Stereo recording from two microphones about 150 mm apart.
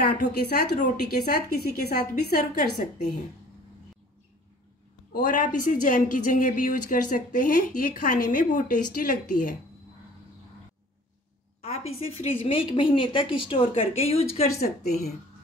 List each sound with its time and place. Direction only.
0.5 s a woman's voice: 90° left
5.1 s a woman's voice: 65° left (ahead or behind)
11.6 s a woman's voice: 45° left (ahead or behind)